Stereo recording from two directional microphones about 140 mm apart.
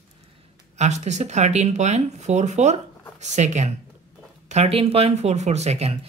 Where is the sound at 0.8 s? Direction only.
55° right (ahead or behind).